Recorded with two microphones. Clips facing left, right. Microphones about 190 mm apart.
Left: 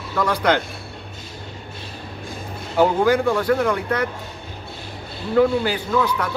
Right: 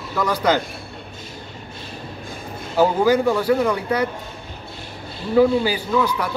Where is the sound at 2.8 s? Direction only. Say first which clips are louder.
Even; 5° right (ahead or behind).